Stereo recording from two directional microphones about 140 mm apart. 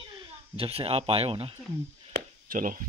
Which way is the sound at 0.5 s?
45° right (ahead or behind).